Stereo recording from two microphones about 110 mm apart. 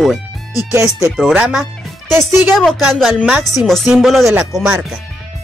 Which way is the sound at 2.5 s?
5° left (ahead or behind).